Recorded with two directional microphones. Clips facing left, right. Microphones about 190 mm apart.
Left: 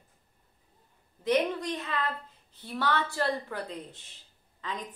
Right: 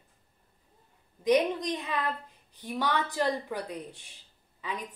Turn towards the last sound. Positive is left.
turn(degrees=-10)  # may be behind; listen again after turning